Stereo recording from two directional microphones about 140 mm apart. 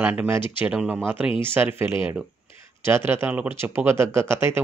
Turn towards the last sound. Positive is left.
turn(degrees=-15)  # may be behind; listen again after turning